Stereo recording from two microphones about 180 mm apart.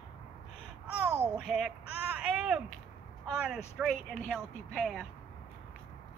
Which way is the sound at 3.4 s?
Centre (ahead or behind).